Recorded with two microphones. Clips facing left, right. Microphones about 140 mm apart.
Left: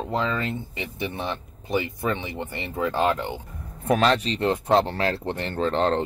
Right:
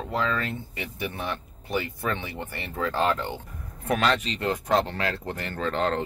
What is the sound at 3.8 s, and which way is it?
Speech, 35° left (ahead or behind).